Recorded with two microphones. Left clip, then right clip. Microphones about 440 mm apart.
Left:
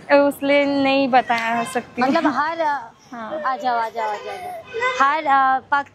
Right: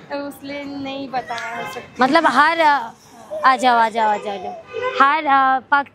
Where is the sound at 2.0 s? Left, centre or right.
Right.